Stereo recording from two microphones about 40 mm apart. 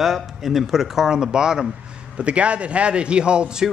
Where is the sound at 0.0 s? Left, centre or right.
Centre.